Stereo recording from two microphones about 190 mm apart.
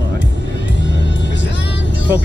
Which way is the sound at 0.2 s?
70° left (ahead or behind).